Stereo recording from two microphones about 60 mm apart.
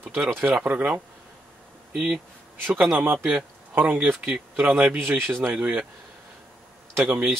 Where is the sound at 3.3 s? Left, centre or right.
Right.